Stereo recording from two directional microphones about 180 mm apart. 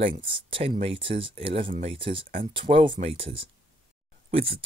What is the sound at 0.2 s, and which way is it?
Speech, 30° right (ahead or behind).